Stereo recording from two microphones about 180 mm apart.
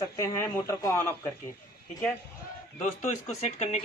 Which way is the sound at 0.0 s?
20° left (ahead or behind).